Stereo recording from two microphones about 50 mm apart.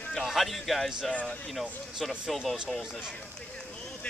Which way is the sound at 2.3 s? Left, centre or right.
Centre.